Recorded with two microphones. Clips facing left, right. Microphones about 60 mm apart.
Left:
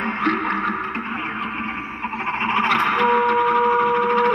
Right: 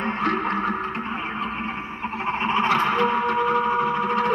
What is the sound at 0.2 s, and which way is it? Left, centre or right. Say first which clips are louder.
Music: left 3 dB; left.